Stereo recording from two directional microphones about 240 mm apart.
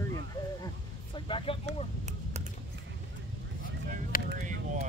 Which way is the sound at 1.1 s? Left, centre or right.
Left.